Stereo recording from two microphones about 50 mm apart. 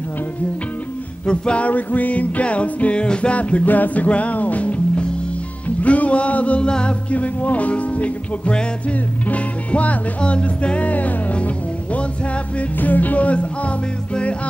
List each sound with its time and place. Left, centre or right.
1.2 s music: centre
5.8 s a sound: left
6.7 s music: centre